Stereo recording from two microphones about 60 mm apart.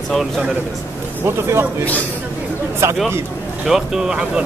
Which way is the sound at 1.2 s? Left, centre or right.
Right.